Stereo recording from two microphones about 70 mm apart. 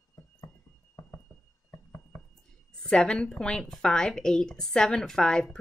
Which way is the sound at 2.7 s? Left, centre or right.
Centre.